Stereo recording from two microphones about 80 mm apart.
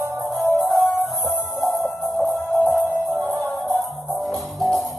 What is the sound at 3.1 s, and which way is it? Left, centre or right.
Music, right.